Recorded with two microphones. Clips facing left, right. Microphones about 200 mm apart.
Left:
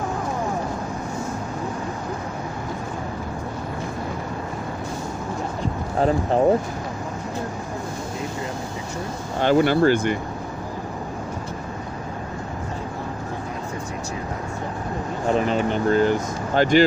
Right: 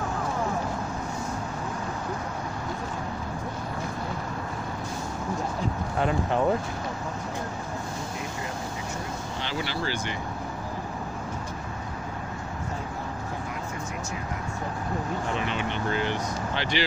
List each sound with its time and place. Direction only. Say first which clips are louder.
5.9 s speech: left 6 dB; 35° left (ahead or behind)
9.4 s speech: left 16 dB; 50° left (ahead or behind)
15.3 s speech: left 8 dB; 40° left (ahead or behind)